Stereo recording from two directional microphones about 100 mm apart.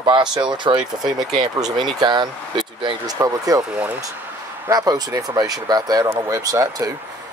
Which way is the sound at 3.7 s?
15° right (ahead or behind).